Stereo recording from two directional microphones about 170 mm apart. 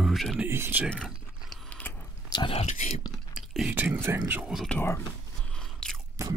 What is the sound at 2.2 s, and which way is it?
Speech, 30° left (ahead or behind).